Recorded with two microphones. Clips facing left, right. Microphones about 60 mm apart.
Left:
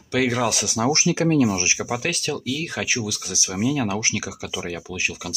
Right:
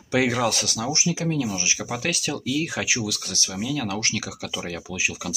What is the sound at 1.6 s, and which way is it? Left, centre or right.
Speech, left.